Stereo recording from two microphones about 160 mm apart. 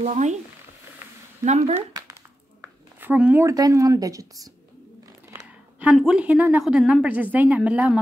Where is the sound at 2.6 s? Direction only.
10° right (ahead or behind).